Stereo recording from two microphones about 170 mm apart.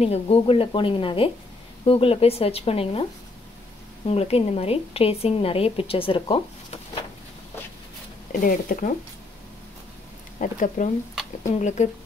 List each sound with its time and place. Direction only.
0.0 s a woman's voice: 35° left (ahead or behind)
4.1 s a woman's voice: 35° left (ahead or behind)
8.3 s speech: 55° left (ahead or behind)
10.4 s speech: 50° left (ahead or behind)